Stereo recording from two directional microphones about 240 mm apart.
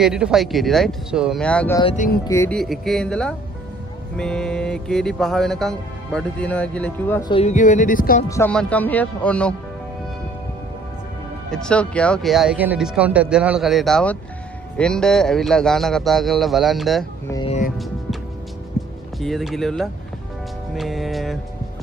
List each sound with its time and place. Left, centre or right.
0.0 s speech: centre
1.8 s speech: left
2.2 s speech: centre
2.6 s speech: centre
7.2 s music: left
8.3 s speech: centre
11.5 s speech: centre
17.3 s speech: centre
19.1 s speech: centre